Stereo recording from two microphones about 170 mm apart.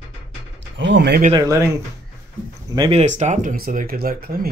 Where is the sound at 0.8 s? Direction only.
90° right.